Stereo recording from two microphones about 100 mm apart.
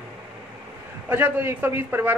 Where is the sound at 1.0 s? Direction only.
20° right (ahead or behind).